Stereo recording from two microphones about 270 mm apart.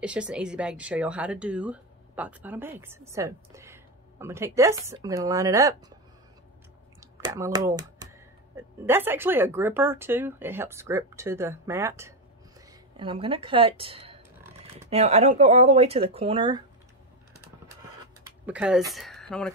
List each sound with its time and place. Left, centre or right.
0.0 s speech: centre
7.2 s speech: centre
18.4 s speech: centre